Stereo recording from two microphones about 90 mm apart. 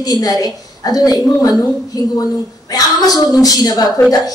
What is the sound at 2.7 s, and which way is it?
A woman's voice, 45° left (ahead or behind).